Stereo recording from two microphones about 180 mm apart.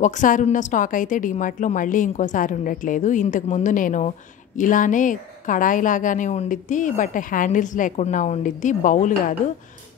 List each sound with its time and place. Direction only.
0.0 s a woman's voice: 45° left (ahead or behind)